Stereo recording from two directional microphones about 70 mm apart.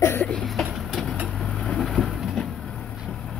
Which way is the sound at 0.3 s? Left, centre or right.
Centre.